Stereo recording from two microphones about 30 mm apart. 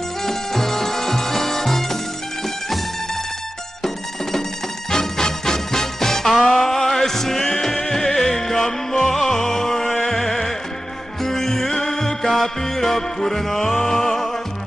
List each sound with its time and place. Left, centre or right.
0.2 s music: centre
4.9 s music: centre